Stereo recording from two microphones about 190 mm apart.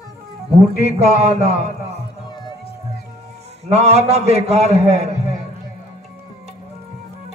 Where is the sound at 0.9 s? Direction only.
35° right (ahead or behind).